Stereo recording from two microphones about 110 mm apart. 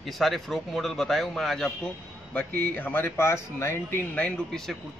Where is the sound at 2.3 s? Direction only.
15° left (ahead or behind).